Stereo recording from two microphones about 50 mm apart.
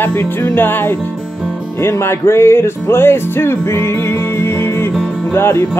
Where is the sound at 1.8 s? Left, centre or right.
Left.